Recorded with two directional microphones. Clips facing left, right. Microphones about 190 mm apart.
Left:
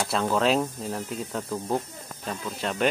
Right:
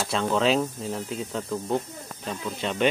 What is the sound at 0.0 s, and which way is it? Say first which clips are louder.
Speech: even; 5° left (ahead or behind).